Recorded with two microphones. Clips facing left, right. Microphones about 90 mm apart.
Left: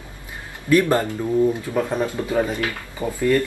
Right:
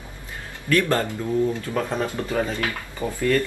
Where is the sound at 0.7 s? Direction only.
20° left (ahead or behind).